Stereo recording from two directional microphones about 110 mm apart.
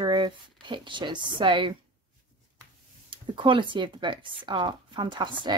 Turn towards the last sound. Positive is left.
turn(degrees=-45)  # may be behind; listen again after turning